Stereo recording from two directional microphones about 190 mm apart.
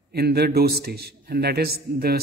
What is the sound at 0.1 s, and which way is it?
A man's voice, 55° right (ahead or behind).